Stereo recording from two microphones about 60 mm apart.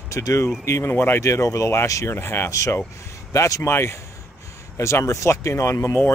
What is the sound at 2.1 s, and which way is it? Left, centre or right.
Speech, left.